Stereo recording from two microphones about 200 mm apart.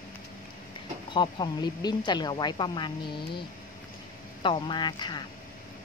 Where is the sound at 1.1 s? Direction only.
20° left (ahead or behind).